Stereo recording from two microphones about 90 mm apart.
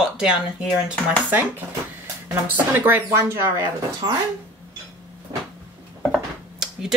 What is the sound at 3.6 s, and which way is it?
Speech, 45° right (ahead or behind).